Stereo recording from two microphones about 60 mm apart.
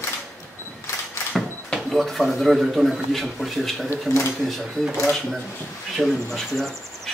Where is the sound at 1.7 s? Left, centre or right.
Centre.